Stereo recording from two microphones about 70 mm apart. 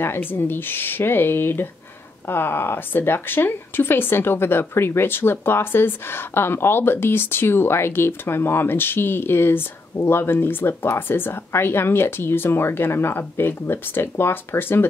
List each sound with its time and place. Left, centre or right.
0.0 s speech: left